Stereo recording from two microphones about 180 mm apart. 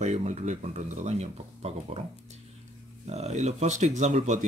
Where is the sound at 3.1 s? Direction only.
35° right (ahead or behind).